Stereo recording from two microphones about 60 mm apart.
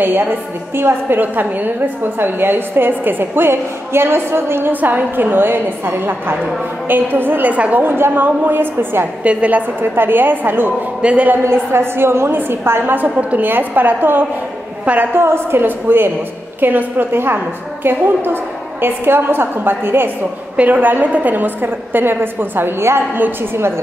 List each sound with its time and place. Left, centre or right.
0.0 s a woman's voice: right
4.7 s a woman's voice: right
7.8 s a woman's voice: right
9.2 s a woman's voice: right
9.8 s a woman's voice: right
11.0 s a woman's voice: right
11.5 s a woman's voice: right
20.5 s a woman's voice: right